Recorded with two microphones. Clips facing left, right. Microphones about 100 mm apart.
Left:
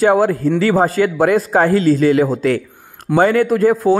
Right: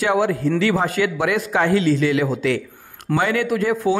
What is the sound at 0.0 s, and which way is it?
Speech, 40° left (ahead or behind).